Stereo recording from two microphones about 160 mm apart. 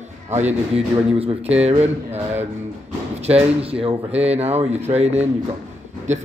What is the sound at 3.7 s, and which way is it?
A man's voice, 40° right (ahead or behind).